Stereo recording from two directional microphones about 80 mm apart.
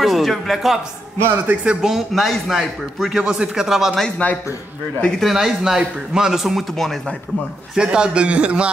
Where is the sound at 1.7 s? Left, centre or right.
Centre.